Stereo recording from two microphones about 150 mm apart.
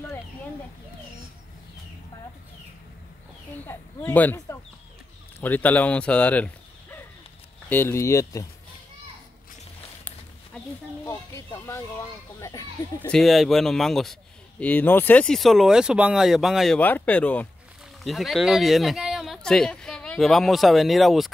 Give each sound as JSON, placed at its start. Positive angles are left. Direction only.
{"t": 3.5, "sound": "speech", "side_deg": 10}
{"t": 11.1, "sound": "a child's voice", "side_deg": 20}
{"t": 13.1, "sound": "speech", "side_deg": 0}
{"t": 16.8, "sound": "speech", "side_deg": 10}